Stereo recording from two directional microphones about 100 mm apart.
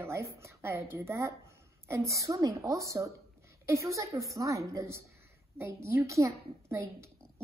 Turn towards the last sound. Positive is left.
turn(degrees=-30)  # may be behind; listen again after turning